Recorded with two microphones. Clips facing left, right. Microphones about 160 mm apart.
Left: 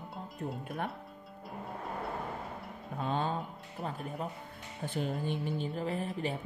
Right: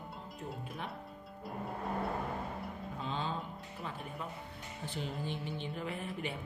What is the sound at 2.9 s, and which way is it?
Music, 55° left (ahead or behind).